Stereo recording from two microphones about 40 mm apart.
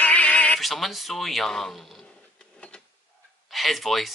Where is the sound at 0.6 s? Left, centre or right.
Centre.